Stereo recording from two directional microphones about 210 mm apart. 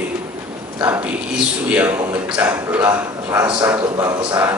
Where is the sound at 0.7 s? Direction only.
10° right (ahead or behind).